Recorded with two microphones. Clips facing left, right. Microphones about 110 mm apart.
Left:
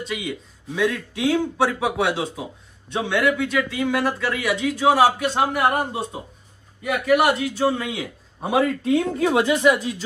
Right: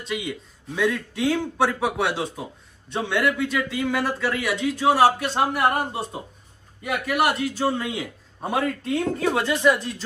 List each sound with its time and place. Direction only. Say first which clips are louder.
0.1 s a man's voice: even; centre (ahead or behind)